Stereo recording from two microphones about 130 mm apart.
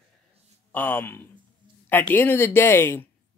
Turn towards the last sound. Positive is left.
turn(degrees=20)  # may be behind; listen again after turning